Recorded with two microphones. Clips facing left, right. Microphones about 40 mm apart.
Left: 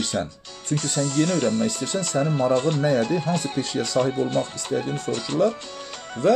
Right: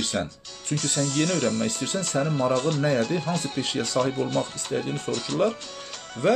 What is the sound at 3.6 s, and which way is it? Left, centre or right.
Speech, right.